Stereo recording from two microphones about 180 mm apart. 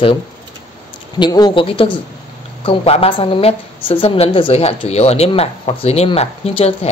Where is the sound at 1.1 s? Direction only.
20° left (ahead or behind).